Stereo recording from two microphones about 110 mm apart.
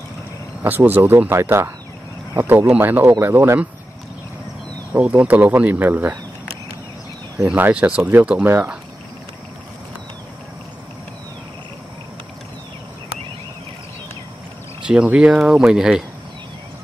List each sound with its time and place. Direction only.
0.6 s speech: 15° right (ahead or behind)
4.9 s speech: 10° right (ahead or behind)
7.4 s speech: 15° right (ahead or behind)
14.8 s speech: 10° right (ahead or behind)